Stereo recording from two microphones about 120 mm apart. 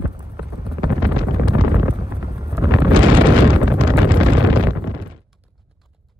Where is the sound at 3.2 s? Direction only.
45° right (ahead or behind).